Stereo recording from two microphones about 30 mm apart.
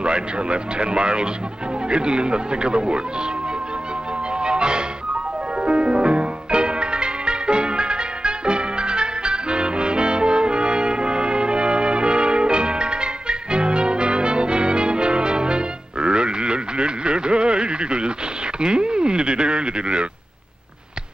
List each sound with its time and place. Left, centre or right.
0.0 s speech: right
4.3 s music: right
18.6 s a sound: right